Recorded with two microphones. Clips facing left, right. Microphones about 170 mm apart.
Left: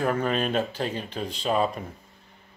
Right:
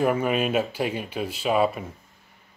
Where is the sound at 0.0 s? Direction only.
10° right (ahead or behind).